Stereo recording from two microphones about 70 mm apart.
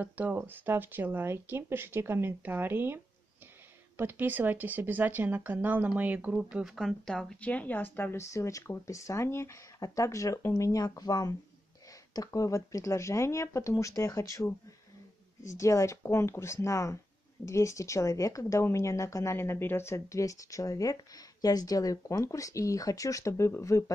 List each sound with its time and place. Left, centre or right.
0.0 s speech: right
6.3 s speech: centre
7.3 s speech: left
8.2 s a woman's voice: left
12.3 s a woman's voice: left